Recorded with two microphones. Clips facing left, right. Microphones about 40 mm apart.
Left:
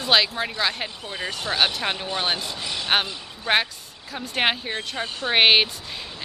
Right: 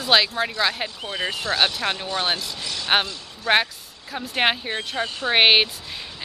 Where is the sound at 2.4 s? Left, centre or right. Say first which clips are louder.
Left 1 dB; left.